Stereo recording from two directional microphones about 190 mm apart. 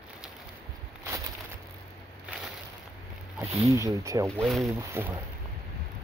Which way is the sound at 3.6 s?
15° right (ahead or behind).